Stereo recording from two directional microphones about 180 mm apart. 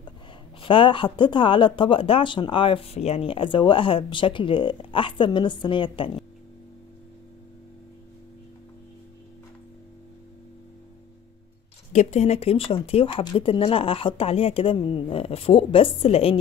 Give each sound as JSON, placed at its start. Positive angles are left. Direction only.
{"t": 0.6, "sound": "speech", "side_deg": 30}
{"t": 11.9, "sound": "speech", "side_deg": 40}